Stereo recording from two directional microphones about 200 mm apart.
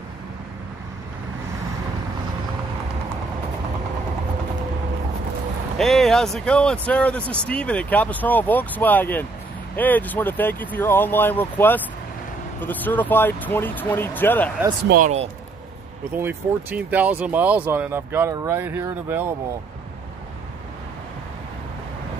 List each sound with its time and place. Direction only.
5.8 s speech: centre (ahead or behind)
14.9 s speech: 40° right (ahead or behind)
16.2 s speech: 10° right (ahead or behind)